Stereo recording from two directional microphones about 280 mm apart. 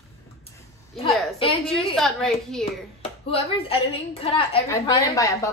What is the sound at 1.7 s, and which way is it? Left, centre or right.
Speech, centre.